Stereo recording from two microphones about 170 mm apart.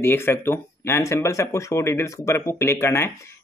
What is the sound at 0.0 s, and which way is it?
Speech, 15° left (ahead or behind).